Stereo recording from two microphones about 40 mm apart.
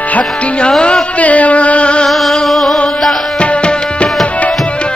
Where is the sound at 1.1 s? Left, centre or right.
Left.